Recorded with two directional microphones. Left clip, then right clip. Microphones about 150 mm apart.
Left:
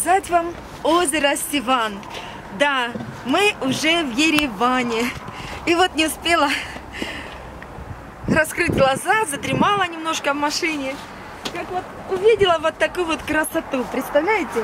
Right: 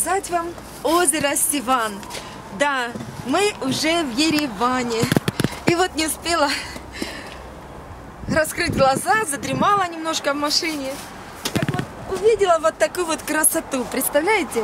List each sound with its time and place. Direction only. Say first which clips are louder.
0.0 s speech: left 4 dB; 5° left (ahead or behind)
8.3 s speech: left 2 dB; centre (ahead or behind)
12.1 s speech: left 1 dB; 15° right (ahead or behind)
13.9 s speech: even; 45° right (ahead or behind)